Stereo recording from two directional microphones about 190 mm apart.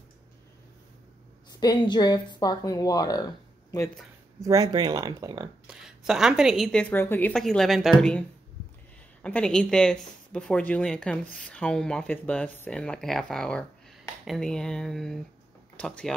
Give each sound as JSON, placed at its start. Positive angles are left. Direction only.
{"t": 1.5, "sound": "speech", "side_deg": 20}
{"t": 4.4, "sound": "speech", "side_deg": -15}
{"t": 5.7, "sound": "a woman's voice", "side_deg": -5}
{"t": 9.2, "sound": "a woman's voice", "side_deg": 5}